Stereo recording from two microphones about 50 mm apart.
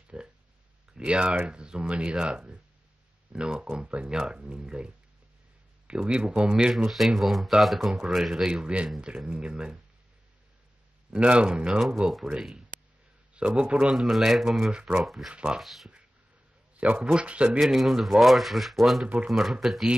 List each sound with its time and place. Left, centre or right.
0.1 s speech: centre
6.0 s speech: centre
8.5 s speech: centre
11.1 s speech: right
13.9 s speech: centre
14.7 s speech: centre
15.0 s speech: centre
15.3 s speech: centre
15.6 s speech: centre
16.8 s speech: right
17.6 s speech: centre